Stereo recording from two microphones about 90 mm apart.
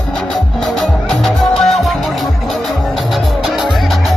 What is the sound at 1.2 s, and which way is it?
Music, centre (ahead or behind).